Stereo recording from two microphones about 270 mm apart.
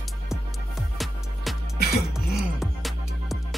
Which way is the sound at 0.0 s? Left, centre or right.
Centre.